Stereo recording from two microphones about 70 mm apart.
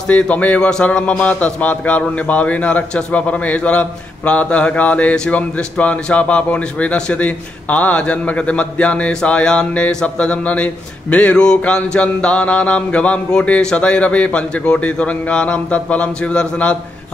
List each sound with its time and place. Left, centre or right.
0.1 s a man's voice: left